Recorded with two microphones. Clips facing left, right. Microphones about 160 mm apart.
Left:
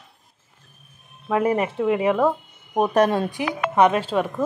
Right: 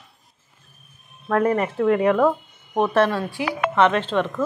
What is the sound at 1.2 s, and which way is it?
Speech, 10° left (ahead or behind).